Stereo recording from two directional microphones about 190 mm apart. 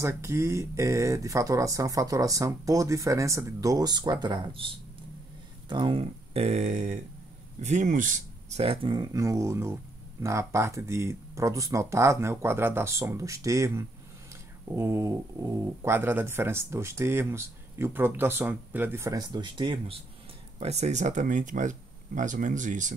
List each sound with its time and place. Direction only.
0.0 s speech: 15° right (ahead or behind); by 22.9 s 40° right (ahead or behind)